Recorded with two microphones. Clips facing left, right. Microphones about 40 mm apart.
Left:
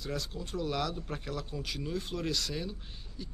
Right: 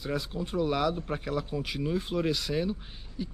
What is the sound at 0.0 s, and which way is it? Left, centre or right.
Speech, centre.